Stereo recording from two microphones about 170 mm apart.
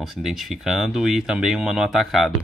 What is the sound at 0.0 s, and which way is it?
Speech, centre (ahead or behind).